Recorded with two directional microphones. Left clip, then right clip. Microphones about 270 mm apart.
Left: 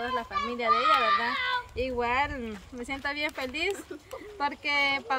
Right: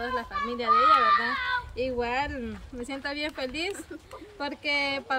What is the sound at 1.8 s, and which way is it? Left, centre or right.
A woman's voice, centre.